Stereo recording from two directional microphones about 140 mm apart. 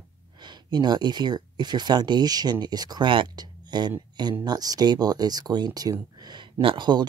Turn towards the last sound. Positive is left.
turn(degrees=-30)  # may be behind; listen again after turning